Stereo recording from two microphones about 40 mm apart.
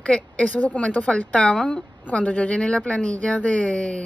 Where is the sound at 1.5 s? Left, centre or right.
Centre.